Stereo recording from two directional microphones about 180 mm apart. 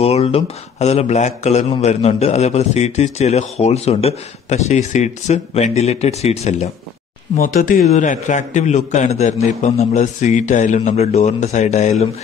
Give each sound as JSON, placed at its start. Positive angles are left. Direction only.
{"t": 0.0, "sound": "speech", "side_deg": 35}
{"t": 7.3, "sound": "speech", "side_deg": 50}